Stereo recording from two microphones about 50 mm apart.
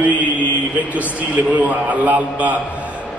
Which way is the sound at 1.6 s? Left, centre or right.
Right.